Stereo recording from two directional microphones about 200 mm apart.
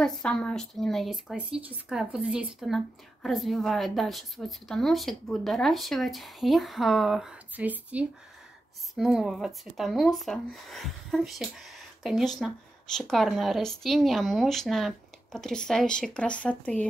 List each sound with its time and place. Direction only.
0.0 s speech: 5° left (ahead or behind)